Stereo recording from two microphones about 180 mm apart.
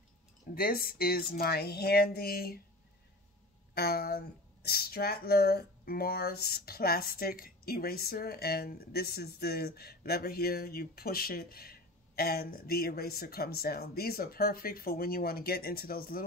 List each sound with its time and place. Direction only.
0.6 s speech: 55° left (ahead or behind)
3.7 s speech: 60° left (ahead or behind)